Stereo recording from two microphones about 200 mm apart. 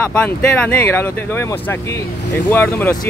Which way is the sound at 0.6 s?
10° left (ahead or behind).